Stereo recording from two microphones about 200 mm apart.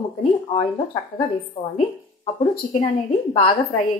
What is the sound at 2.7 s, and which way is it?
A woman's voice, 30° left (ahead or behind).